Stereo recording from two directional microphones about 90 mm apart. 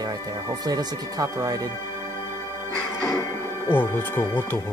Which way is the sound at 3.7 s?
20° left (ahead or behind).